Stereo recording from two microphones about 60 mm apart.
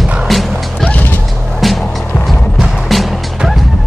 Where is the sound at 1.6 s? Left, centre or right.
Centre.